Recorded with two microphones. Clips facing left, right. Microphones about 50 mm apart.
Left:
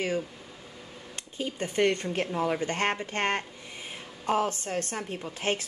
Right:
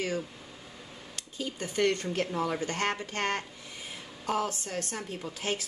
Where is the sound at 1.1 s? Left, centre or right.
Left.